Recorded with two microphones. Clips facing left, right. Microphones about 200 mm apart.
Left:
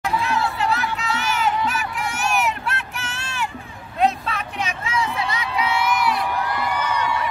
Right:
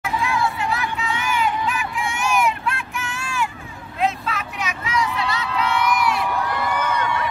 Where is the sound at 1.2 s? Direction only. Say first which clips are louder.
Even; 40° left (ahead or behind); by 6.2 s 5° left (ahead or behind).